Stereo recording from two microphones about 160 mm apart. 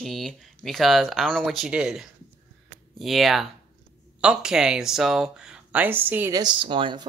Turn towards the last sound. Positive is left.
turn(degrees=-30)  # may be behind; listen again after turning